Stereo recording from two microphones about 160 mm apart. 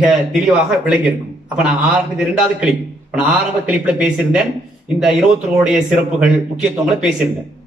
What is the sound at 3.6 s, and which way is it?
Speech, 5° right (ahead or behind).